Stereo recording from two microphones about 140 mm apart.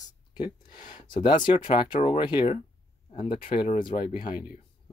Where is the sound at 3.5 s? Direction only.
45° left (ahead or behind).